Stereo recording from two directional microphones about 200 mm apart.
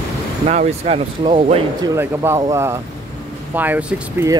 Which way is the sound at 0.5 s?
30° right (ahead or behind).